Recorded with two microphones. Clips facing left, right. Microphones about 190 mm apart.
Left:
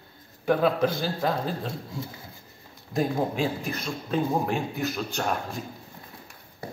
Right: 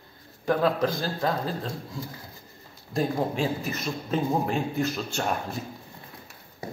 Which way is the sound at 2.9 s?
Centre (ahead or behind).